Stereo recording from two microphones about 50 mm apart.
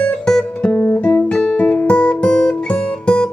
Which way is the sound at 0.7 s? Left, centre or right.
Left.